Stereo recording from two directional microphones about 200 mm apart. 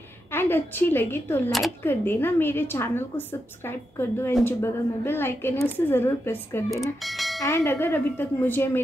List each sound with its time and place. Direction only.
0.3 s speech: 10° left (ahead or behind)
6.7 s speech: centre (ahead or behind)
7.4 s speech: 10° left (ahead or behind)